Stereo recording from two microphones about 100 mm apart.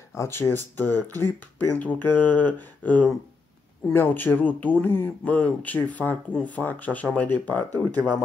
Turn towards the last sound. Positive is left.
turn(degrees=15)  # may be behind; listen again after turning